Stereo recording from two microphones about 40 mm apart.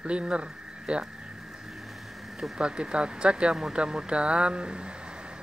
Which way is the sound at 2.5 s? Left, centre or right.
Right.